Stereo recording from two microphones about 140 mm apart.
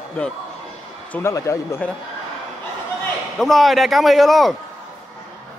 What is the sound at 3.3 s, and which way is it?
A man's voice, centre (ahead or behind).